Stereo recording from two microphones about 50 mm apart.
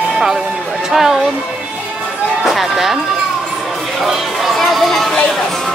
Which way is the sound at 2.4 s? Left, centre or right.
Centre.